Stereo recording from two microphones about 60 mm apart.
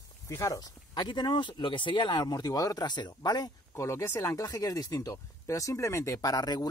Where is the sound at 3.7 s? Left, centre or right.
Left.